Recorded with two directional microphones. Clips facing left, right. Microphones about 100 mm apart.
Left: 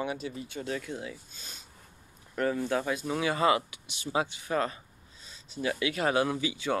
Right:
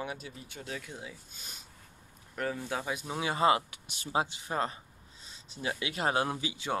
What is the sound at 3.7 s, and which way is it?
Speech, 45° right (ahead or behind).